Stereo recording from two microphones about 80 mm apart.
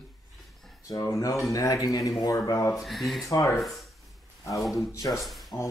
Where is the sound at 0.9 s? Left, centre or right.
Left.